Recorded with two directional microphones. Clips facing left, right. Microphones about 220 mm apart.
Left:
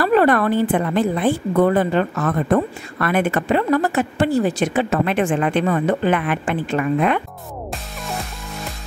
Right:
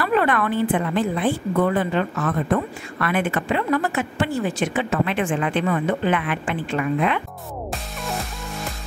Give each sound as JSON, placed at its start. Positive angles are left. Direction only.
{"t": 0.0, "sound": "a woman's voice", "side_deg": 40}